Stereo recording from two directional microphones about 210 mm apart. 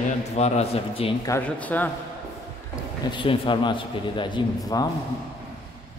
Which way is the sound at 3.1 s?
25° left (ahead or behind).